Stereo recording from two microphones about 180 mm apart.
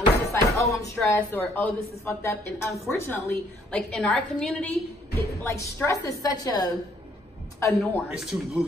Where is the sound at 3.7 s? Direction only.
5° left (ahead or behind).